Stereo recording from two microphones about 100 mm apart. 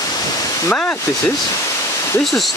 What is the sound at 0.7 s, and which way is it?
Speech, 20° left (ahead or behind).